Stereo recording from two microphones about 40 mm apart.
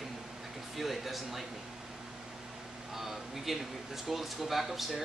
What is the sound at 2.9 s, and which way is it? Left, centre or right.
Speech, centre.